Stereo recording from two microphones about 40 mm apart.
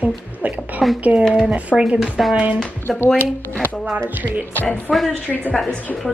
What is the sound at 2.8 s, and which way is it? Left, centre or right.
Speech, left.